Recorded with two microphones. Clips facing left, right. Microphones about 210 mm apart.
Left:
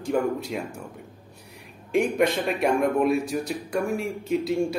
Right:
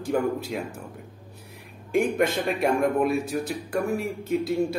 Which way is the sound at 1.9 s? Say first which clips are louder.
Left 1 dB; centre (ahead or behind).